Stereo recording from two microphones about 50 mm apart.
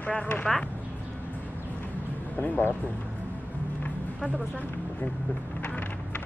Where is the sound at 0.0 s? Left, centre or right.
Left.